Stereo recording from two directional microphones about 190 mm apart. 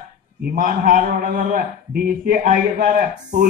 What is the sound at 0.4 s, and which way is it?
A man's voice, 45° right (ahead or behind).